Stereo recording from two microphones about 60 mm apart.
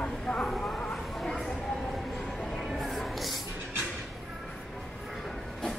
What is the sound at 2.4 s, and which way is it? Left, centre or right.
Music, centre.